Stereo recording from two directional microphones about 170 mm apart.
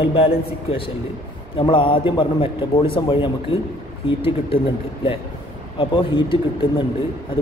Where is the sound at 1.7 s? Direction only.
30° left (ahead or behind).